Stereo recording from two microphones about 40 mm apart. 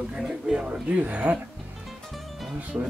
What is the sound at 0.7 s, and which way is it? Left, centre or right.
Speech, right.